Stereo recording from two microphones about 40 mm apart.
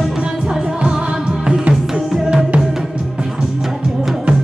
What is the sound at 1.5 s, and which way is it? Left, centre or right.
Music, right.